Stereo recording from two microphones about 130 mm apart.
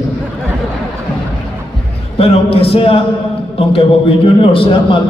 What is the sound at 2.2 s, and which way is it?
A man's voice, 45° left (ahead or behind).